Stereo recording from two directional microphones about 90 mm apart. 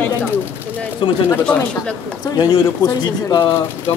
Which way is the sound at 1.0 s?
60° left (ahead or behind).